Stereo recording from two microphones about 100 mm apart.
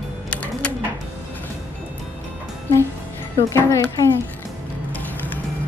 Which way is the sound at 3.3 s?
30° left (ahead or behind).